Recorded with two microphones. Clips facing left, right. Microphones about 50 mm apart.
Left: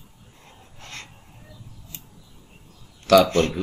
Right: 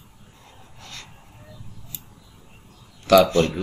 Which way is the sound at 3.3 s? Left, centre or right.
Left.